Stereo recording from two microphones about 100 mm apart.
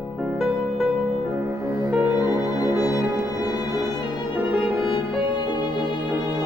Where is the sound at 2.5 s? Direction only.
35° left (ahead or behind).